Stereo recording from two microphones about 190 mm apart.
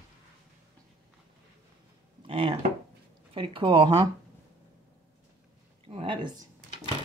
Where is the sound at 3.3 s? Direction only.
25° right (ahead or behind).